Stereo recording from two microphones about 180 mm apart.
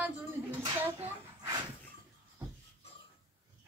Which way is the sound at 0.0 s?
10° right (ahead or behind).